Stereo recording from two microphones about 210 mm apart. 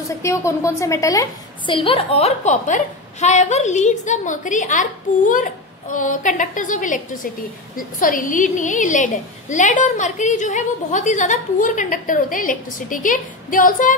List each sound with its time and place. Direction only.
0.2 s a woman's voice: 15° left (ahead or behind); by 13.9 s 40° left (ahead or behind)